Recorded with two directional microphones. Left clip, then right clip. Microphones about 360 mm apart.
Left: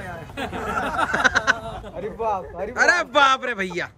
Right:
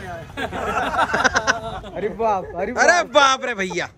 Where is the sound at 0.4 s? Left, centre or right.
Centre.